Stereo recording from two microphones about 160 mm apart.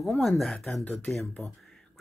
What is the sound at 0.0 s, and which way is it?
Speech, centre (ahead or behind).